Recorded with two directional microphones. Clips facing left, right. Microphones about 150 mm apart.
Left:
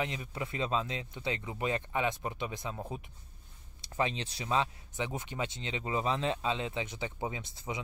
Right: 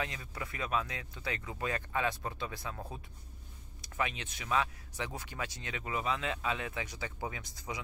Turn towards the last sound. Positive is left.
turn(degrees=25)  # may be behind; listen again after turning